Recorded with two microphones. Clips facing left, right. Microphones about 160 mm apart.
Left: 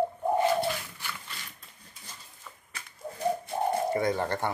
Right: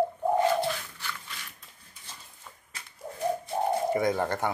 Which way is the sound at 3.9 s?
15° right (ahead or behind).